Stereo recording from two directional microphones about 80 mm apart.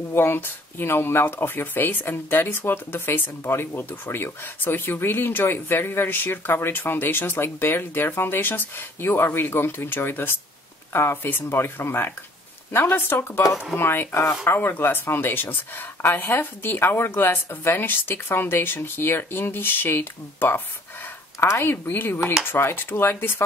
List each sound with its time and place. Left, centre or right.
0.1 s speech: left